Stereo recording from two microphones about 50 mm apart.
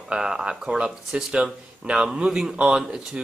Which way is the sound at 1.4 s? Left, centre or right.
Right.